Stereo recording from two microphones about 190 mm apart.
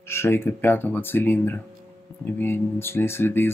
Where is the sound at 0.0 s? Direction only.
15° left (ahead or behind).